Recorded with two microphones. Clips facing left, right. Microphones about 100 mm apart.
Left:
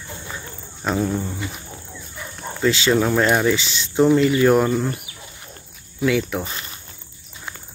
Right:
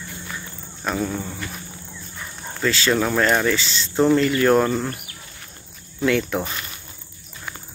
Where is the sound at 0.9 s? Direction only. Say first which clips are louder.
Left 4 dB; 15° left (ahead or behind).